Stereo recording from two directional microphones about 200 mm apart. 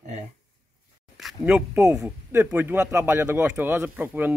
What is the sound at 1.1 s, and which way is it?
Speech, centre (ahead or behind).